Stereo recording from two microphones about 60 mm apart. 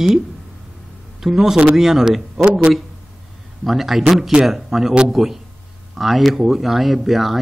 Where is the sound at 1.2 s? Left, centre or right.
Centre.